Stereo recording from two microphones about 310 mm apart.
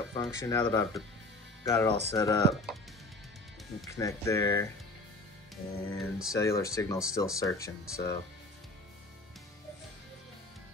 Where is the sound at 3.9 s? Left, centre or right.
Centre.